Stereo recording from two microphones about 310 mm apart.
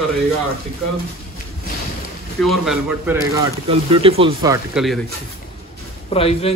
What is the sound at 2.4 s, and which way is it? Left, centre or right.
Speech, centre.